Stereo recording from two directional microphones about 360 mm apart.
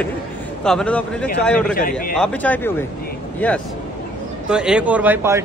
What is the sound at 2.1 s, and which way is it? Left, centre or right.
Speech, centre.